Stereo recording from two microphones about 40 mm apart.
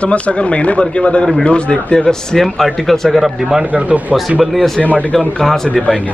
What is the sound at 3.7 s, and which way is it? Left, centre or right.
Speech, right.